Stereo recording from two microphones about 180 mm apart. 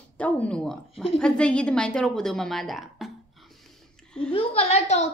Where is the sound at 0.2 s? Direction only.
5° left (ahead or behind).